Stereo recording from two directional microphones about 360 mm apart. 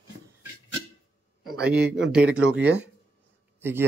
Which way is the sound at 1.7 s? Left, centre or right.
Centre.